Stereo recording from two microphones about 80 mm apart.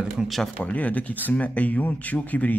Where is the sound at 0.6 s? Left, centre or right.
Centre.